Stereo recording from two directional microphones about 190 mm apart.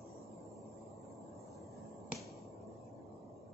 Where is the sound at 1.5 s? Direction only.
Centre (ahead or behind).